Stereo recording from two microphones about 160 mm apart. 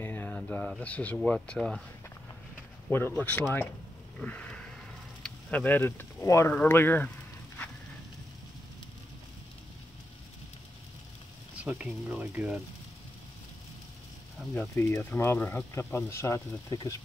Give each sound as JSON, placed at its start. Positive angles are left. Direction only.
{"t": 0.0, "sound": "speech", "side_deg": 10}
{"t": 2.9, "sound": "speech", "side_deg": 15}
{"t": 4.2, "sound": "a sound", "side_deg": 5}
{"t": 5.2, "sound": "speech", "side_deg": 10}
{"t": 11.5, "sound": "speech", "side_deg": -5}
{"t": 14.5, "sound": "speech", "side_deg": 15}